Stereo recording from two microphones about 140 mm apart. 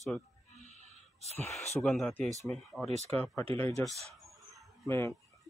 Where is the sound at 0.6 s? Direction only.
55° left (ahead or behind).